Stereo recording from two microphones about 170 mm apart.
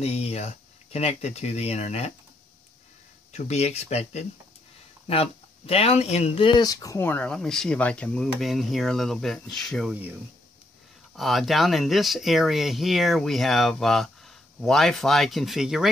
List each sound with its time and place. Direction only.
0.0 s speech: 40° left (ahead or behind)
3.3 s speech: 40° left (ahead or behind); by 9.9 s centre (ahead or behind)
11.1 s speech: centre (ahead or behind)